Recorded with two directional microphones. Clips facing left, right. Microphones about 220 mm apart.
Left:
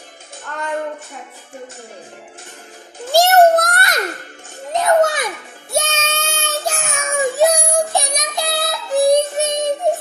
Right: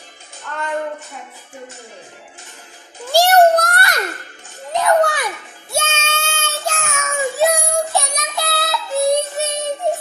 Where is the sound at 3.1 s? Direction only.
20° left (ahead or behind).